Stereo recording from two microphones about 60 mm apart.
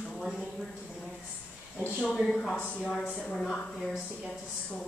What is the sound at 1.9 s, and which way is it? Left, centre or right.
Speech, centre.